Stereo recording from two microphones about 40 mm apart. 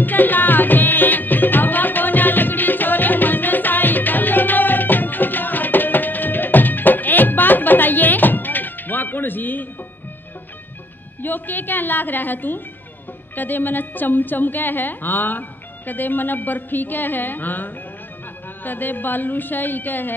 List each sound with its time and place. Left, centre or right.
0.0 s music: left
11.2 s a woman's voice: left